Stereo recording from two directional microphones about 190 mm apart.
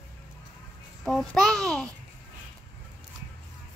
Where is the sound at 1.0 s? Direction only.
Centre (ahead or behind).